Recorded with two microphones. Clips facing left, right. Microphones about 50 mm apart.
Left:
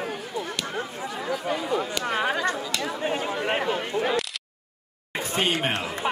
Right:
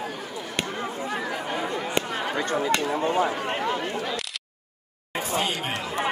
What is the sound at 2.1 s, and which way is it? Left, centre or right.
Speech, left.